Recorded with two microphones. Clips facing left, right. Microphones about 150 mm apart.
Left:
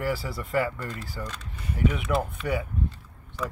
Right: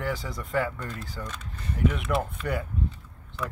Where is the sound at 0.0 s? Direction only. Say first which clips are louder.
Left 2 dB; 5° left (ahead or behind).